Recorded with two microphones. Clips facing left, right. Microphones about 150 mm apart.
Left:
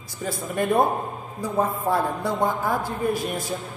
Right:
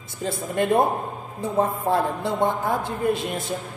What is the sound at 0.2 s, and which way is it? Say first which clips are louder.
Speech: right 2 dB; 25° right (ahead or behind).